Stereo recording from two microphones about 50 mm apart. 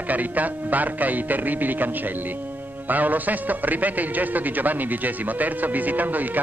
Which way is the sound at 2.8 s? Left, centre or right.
Right.